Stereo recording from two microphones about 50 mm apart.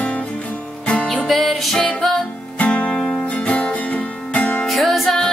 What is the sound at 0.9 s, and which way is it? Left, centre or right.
Music, centre.